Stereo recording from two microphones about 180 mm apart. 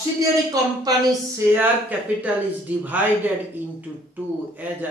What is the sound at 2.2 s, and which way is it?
Speech, 10° right (ahead or behind).